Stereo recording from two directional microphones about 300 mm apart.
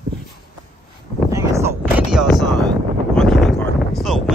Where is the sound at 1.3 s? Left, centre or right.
Centre.